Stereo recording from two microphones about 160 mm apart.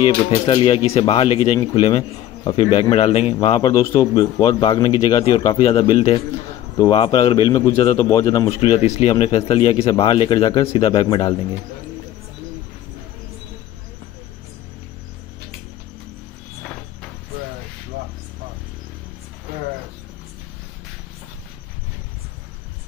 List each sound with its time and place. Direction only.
0.0 s speech: 35° left (ahead or behind)
8.5 s speech: 40° left (ahead or behind)
9.6 s speech: 25° left (ahead or behind)